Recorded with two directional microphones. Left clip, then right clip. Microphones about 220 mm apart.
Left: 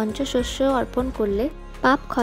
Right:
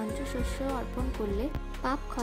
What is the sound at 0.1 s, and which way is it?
Speech, 35° left (ahead or behind).